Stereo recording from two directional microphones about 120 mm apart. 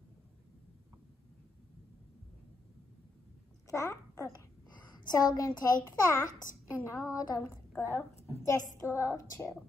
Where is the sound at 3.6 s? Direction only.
25° left (ahead or behind).